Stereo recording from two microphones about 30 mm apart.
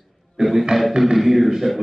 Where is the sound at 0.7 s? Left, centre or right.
Centre.